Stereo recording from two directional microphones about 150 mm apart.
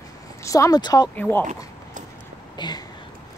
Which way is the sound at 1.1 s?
10° left (ahead or behind).